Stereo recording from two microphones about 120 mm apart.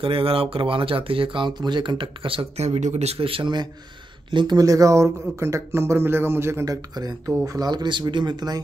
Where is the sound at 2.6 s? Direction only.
70° right (ahead or behind).